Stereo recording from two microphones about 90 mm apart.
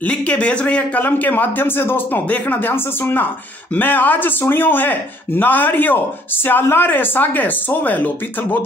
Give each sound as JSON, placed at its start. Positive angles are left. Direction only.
{"t": 0.0, "sound": "speech", "side_deg": 15}